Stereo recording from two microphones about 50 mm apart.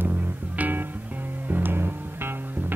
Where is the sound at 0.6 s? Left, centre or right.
Right.